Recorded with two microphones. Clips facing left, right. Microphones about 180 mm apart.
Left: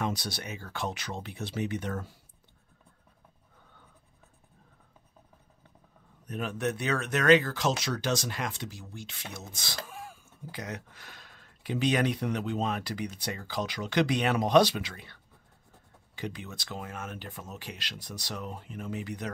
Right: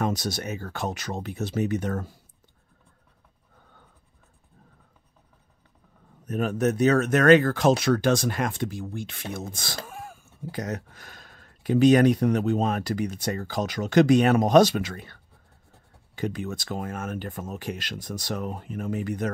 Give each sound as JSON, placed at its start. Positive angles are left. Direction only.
{"t": 0.0, "sound": "speech", "side_deg": -45}
{"t": 6.2, "sound": "speech", "side_deg": -45}
{"t": 16.2, "sound": "speech", "side_deg": -50}